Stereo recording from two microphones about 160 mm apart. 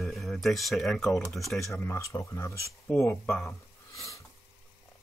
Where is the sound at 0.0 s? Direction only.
Centre (ahead or behind).